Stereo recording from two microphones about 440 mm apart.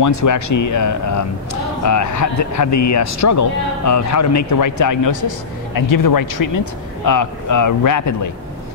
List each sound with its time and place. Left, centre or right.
0.0 s speech: left